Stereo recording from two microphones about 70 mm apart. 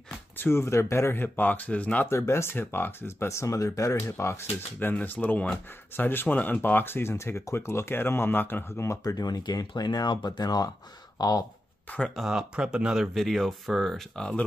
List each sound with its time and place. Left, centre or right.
0.4 s speech: left
2.0 s speech: left
9.0 s speech: left
11.1 s speech: left
12.3 s speech: centre